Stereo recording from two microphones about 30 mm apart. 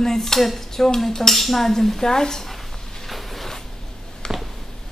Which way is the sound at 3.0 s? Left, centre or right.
Centre.